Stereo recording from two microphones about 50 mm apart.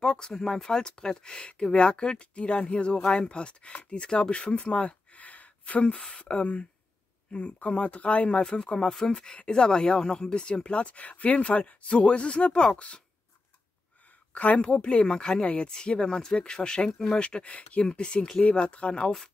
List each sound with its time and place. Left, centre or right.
0.0 s speech: centre
14.3 s speech: left